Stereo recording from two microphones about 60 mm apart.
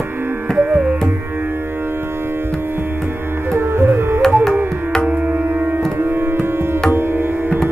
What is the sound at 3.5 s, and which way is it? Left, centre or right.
Music, right.